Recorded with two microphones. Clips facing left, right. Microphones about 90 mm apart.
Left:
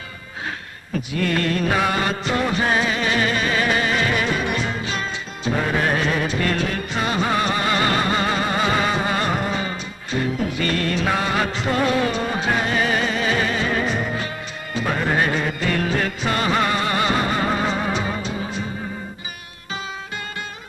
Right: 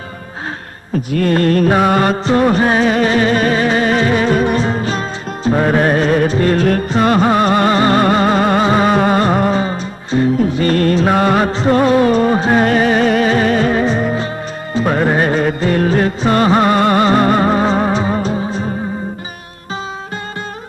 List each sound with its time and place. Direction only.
1.1 s music: 40° right (ahead or behind)
8.6 s music: 35° right (ahead or behind)
8.9 s music: 45° right (ahead or behind)